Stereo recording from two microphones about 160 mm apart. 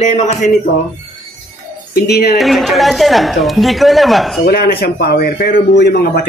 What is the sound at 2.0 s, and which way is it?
Speech, 90° left.